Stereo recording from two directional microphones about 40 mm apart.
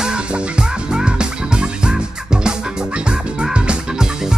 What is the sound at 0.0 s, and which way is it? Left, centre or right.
Music, right.